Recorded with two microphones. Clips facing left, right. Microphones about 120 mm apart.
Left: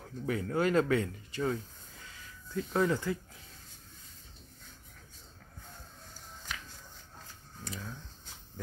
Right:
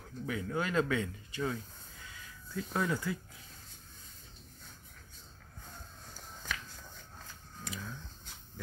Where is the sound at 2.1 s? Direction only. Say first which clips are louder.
Left 3 dB; 35° left (ahead or behind).